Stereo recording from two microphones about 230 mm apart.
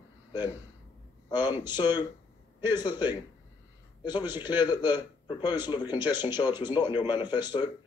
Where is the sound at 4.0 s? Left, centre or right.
Centre.